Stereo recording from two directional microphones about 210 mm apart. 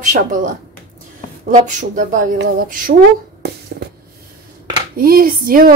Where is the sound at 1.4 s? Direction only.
40° right (ahead or behind).